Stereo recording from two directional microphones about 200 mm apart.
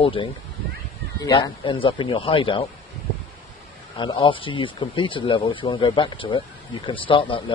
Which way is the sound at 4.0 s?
25° left (ahead or behind).